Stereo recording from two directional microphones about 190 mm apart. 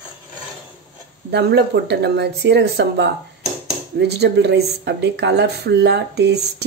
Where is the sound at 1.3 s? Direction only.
60° right (ahead or behind).